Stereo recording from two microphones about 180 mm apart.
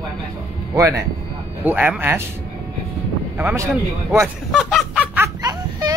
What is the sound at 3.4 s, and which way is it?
Speech, 10° right (ahead or behind).